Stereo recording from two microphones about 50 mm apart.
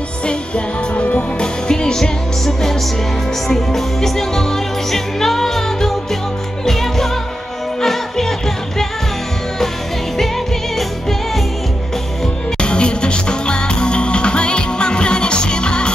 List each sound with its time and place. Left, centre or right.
0.9 s music: left
1.4 s music: centre
12.5 s music: centre